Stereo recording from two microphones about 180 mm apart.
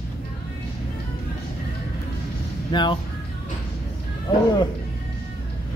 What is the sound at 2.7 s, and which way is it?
Speech, 25° left (ahead or behind).